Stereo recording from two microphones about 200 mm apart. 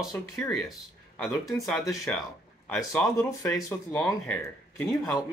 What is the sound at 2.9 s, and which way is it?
Speech, 15° left (ahead or behind).